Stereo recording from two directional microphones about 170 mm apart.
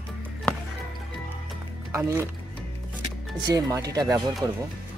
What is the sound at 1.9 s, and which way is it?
Speech, 15° right (ahead or behind).